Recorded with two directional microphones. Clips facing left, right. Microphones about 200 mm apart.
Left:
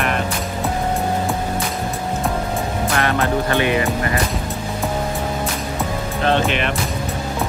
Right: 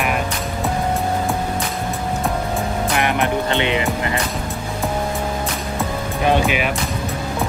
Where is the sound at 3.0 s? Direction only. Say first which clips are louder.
Left 1 dB; 15° right (ahead or behind).